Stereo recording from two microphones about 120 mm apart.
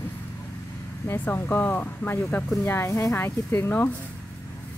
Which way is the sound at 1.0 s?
15° left (ahead or behind).